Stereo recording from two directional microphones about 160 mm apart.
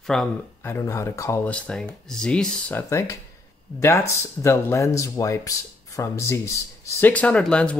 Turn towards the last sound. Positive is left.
turn(degrees=5)  # may be behind; listen again after turning